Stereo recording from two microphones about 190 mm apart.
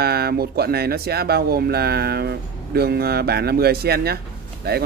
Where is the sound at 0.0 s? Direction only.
55° right (ahead or behind).